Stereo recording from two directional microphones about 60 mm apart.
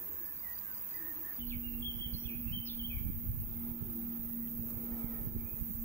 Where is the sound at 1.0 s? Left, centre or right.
Centre.